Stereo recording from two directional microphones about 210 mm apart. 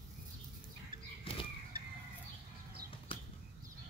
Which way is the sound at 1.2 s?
25° left (ahead or behind).